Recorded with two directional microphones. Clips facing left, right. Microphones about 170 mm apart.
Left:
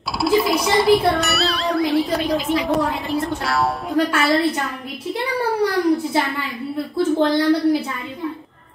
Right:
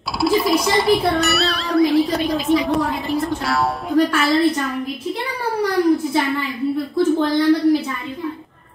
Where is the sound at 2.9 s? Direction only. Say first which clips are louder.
Right 1 dB; centre (ahead or behind).